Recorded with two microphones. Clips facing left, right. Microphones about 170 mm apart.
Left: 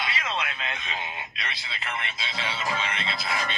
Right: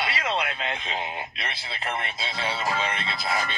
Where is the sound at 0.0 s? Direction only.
30° right (ahead or behind).